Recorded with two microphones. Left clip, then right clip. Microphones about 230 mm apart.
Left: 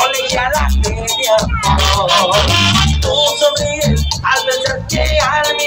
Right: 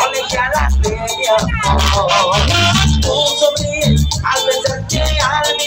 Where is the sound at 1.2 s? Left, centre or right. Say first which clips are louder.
Left 1 dB; left.